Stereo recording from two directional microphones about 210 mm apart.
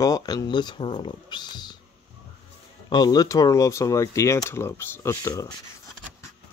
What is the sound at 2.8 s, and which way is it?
Speech, 20° left (ahead or behind).